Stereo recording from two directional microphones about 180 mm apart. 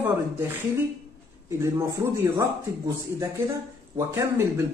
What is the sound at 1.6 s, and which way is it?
Speech, 15° right (ahead or behind).